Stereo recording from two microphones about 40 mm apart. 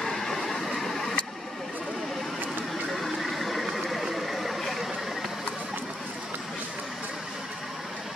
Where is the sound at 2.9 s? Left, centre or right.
Centre.